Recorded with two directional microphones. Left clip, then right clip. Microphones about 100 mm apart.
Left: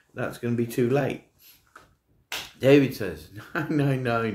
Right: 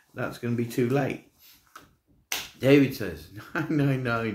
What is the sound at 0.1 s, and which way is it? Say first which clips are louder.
Speech: left 2 dB; 25° left (ahead or behind).